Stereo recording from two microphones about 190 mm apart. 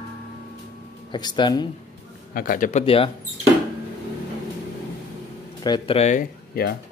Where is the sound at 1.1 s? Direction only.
25° left (ahead or behind).